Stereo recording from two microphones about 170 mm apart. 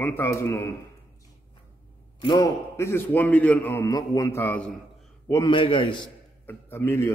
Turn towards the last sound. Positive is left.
turn(degrees=15)  # may be behind; listen again after turning